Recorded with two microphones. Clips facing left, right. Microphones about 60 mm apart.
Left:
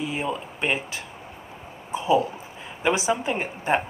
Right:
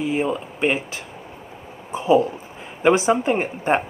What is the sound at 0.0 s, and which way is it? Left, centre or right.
A woman's voice, right.